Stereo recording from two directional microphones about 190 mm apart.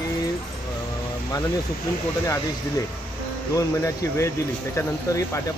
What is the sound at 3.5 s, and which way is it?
Speech, 15° left (ahead or behind).